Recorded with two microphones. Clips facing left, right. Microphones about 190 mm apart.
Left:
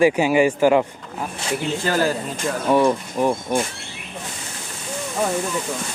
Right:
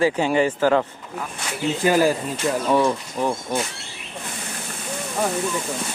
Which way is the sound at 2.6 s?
10° left (ahead or behind).